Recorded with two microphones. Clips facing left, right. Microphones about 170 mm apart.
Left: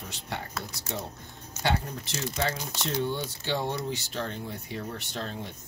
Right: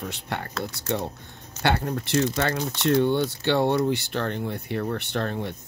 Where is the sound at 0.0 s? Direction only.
65° right (ahead or behind).